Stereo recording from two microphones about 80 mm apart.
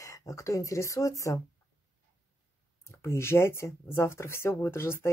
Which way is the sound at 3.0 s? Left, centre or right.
Left.